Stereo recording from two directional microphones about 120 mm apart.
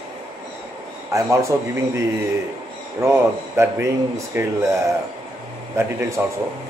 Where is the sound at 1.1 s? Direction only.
25° right (ahead or behind).